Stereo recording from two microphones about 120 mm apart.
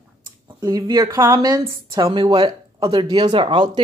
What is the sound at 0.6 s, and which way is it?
Speech, 30° right (ahead or behind).